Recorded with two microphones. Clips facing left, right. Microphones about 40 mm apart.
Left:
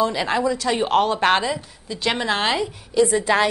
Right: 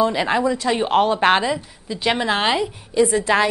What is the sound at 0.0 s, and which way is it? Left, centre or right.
Speech, centre.